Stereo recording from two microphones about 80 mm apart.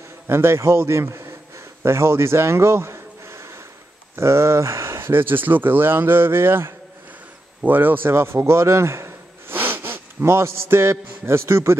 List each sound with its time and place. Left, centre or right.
0.3 s a man's voice: right
1.8 s a sound: right
4.2 s a man's voice: right